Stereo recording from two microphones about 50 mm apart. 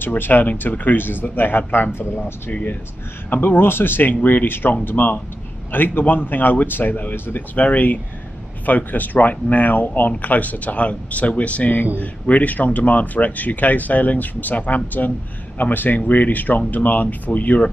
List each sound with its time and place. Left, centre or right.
0.0 s speech: left
2.0 s speech: left
2.5 s speech: left